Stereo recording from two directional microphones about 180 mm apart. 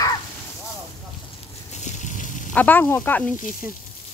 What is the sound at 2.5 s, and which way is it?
Speech, 10° left (ahead or behind).